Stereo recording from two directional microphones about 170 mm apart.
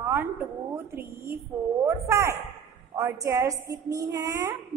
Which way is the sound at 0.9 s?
15° right (ahead or behind).